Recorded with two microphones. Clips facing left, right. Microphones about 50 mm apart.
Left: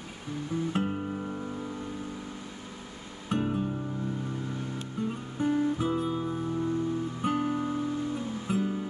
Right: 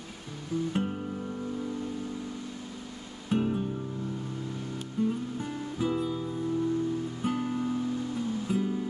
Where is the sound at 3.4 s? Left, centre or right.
Centre.